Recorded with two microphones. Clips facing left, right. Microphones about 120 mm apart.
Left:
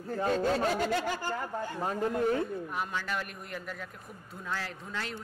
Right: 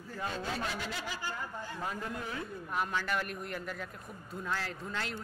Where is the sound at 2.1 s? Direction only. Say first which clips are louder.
Left 11 dB; 50° left (ahead or behind).